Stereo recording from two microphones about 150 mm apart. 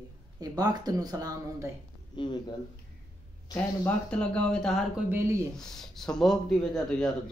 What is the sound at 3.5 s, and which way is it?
Speech, 10° left (ahead or behind).